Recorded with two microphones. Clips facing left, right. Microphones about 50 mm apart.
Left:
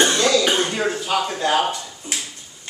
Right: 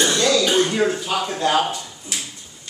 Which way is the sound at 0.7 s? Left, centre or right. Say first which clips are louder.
Right 1 dB; centre.